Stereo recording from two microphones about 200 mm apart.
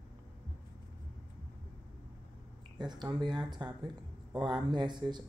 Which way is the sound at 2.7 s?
20° right (ahead or behind).